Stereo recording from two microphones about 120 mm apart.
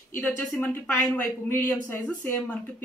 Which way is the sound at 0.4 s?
15° left (ahead or behind).